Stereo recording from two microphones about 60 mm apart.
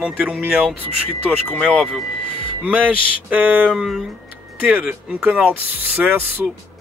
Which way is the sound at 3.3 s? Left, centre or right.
Centre.